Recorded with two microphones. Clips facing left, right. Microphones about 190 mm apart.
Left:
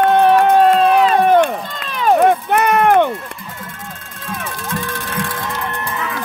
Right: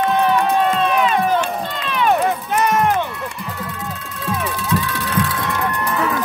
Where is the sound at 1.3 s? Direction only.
50° left (ahead or behind).